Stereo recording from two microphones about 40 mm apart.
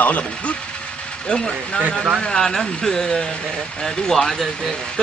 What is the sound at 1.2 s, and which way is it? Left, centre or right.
Speech, left.